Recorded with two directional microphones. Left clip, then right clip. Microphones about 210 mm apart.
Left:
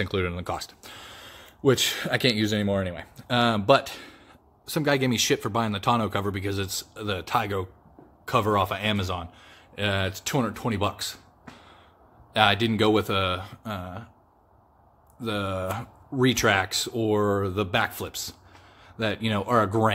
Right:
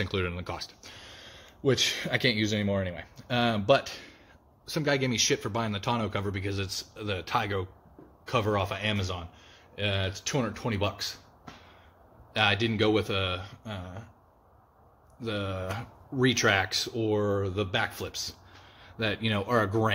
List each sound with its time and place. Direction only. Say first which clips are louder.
0.0 s speech: left 4 dB; 15° left (ahead or behind)
12.4 s speech: left 4 dB; 25° left (ahead or behind)
15.1 s speech: left 4 dB; 20° left (ahead or behind)